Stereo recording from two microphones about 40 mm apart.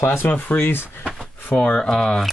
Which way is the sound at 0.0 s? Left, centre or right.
Left.